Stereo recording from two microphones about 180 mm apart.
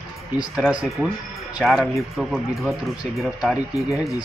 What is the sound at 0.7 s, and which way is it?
Speech, centre (ahead or behind).